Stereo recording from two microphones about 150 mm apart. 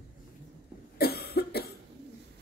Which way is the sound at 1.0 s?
90° left.